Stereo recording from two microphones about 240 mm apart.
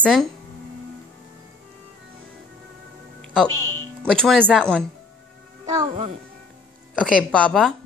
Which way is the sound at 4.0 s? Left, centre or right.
Centre.